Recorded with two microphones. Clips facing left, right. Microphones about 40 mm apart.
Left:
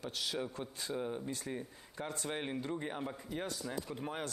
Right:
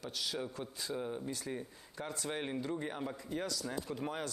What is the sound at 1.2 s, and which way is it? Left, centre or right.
Speech, left.